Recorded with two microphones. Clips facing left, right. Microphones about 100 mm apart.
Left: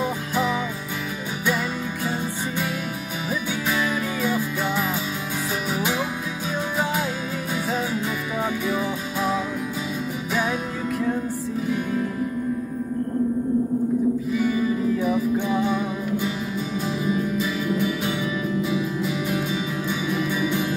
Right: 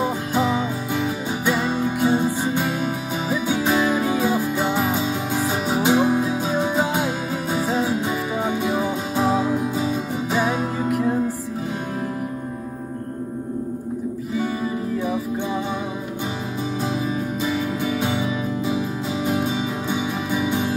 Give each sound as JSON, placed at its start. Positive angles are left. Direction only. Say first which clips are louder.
{"t": 0.0, "sound": "music", "louder": "right 3 dB", "side_deg": -25}
{"t": 17.7, "sound": "music", "louder": "right 1 dB", "side_deg": -25}
{"t": 19.9, "sound": "music", "louder": "even", "side_deg": -25}